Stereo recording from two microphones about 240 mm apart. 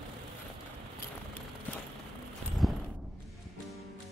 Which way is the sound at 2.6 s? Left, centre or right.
Centre.